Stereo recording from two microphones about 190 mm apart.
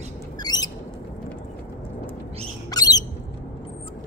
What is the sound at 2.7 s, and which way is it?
Squawk, 20° left (ahead or behind).